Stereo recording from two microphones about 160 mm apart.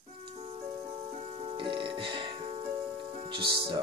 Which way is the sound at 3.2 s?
35° right (ahead or behind).